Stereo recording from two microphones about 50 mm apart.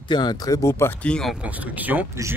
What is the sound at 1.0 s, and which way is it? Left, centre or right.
Speech, left.